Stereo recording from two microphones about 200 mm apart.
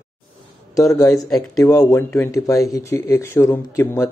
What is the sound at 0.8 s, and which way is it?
A man's voice, 15° left (ahead or behind).